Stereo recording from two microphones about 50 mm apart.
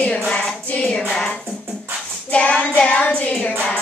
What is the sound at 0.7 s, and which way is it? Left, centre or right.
Music, left.